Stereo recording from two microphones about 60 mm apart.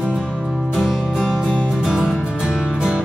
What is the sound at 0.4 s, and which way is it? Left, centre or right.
Music, centre.